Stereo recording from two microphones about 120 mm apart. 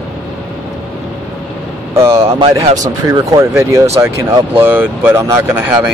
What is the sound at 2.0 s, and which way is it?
Speech, 20° right (ahead or behind).